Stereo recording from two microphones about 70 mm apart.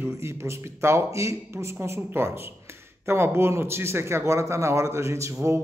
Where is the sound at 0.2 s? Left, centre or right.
Right.